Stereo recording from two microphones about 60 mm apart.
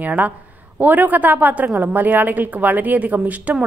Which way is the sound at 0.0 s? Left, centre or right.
Right.